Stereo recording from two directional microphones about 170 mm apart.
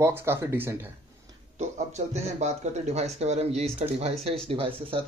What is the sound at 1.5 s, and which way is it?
Speech, 40° right (ahead or behind).